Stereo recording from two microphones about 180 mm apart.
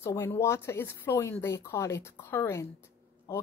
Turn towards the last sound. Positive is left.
turn(degrees=15)  # may be behind; listen again after turning